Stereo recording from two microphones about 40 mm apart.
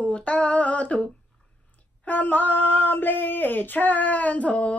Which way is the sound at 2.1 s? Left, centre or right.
Left.